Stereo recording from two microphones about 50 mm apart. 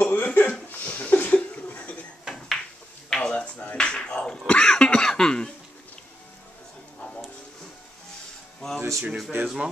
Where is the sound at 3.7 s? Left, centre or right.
Centre.